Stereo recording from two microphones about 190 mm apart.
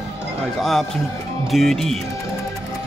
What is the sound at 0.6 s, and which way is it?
Speech, centre (ahead or behind).